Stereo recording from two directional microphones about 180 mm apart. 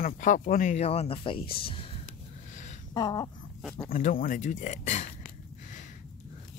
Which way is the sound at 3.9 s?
50° left (ahead or behind).